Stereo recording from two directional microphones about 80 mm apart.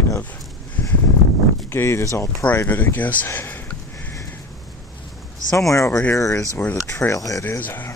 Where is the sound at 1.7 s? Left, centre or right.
Left.